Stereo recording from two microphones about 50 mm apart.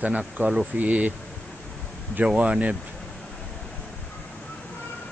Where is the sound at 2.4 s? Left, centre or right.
Right.